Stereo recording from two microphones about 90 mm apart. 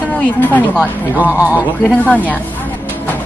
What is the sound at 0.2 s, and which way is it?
Speech, 20° left (ahead or behind).